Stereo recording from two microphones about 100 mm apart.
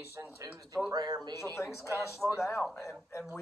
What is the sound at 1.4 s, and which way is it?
Speech, 30° left (ahead or behind).